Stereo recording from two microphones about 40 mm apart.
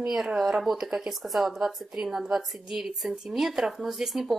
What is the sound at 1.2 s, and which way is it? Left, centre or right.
Speech, centre.